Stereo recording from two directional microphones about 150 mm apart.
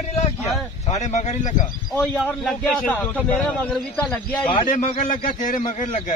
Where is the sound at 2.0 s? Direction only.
10° left (ahead or behind).